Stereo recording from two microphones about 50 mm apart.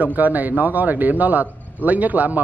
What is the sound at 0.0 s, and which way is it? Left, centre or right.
Speech, right.